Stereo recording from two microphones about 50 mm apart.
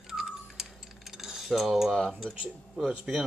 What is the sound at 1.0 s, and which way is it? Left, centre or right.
Cutlery, centre.